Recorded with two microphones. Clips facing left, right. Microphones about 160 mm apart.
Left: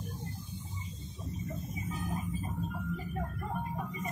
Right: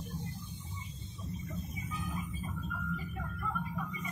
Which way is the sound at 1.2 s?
35° left (ahead or behind).